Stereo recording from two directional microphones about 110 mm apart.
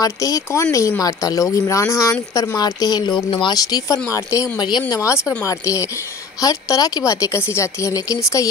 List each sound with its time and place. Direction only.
0.0 s speech: 30° left (ahead or behind)
3.3 s speech: 50° left (ahead or behind)
3.5 s speech: 35° left (ahead or behind)
4.6 s speech: 40° left (ahead or behind)